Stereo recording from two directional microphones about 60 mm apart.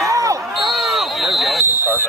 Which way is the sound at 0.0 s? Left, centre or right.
Right.